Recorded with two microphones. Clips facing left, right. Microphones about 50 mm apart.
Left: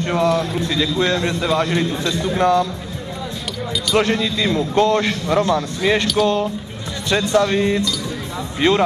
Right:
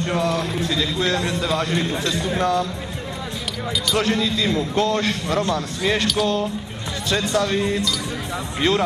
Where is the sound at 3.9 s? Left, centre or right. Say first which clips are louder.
Left 3 dB; left.